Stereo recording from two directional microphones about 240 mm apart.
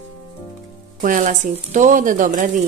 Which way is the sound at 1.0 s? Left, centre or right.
Right.